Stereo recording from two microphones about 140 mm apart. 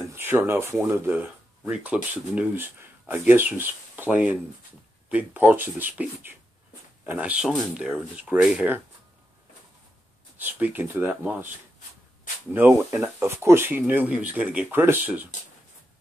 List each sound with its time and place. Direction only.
0.1 s speech: 15° right (ahead or behind)
10.3 s speech: 15° right (ahead or behind)
12.5 s speech: 15° right (ahead or behind)